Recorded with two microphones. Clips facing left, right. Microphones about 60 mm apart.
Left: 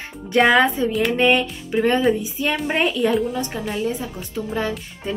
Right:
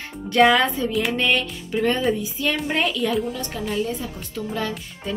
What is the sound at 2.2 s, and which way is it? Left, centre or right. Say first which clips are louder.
Speech: left 1 dB; left.